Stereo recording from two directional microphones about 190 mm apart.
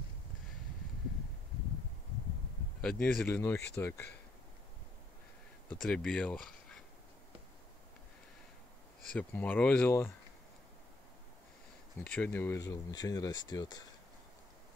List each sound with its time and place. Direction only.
2.8 s speech: 5° left (ahead or behind)
3.3 s speech: 15° left (ahead or behind)
5.7 s speech: 5° left (ahead or behind)
9.1 s speech: 10° left (ahead or behind)
12.0 s speech: 10° left (ahead or behind)